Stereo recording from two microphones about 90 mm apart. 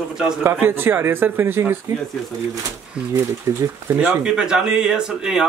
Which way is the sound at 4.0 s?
10° right (ahead or behind).